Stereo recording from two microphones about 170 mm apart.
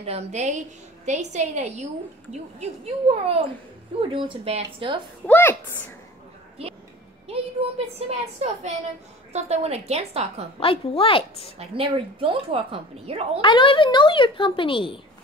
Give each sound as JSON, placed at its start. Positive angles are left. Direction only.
{"t": 0.0, "sound": "a woman's voice", "side_deg": -40}
{"t": 5.2, "sound": "a woman's voice", "side_deg": 10}
{"t": 7.2, "sound": "a woman's voice", "side_deg": -35}
{"t": 9.3, "sound": "a woman's voice", "side_deg": -40}
{"t": 10.6, "sound": "a woman's voice", "side_deg": 35}
{"t": 11.5, "sound": "a woman's voice", "side_deg": -35}
{"t": 13.4, "sound": "a woman's voice", "side_deg": 30}